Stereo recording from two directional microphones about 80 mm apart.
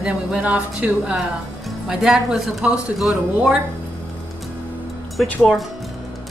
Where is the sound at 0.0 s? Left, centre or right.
Centre.